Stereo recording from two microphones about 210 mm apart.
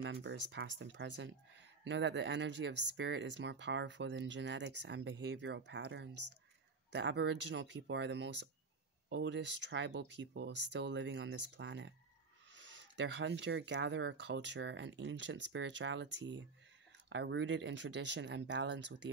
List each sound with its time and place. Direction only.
0.0 s speech: 60° right (ahead or behind)